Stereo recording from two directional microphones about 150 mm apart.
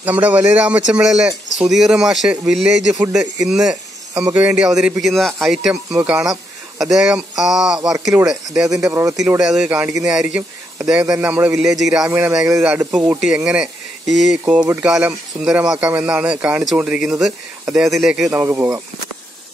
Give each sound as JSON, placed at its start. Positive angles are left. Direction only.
{"t": 0.0, "sound": "a man's voice", "side_deg": -10}
{"t": 18.3, "sound": "speech", "side_deg": -15}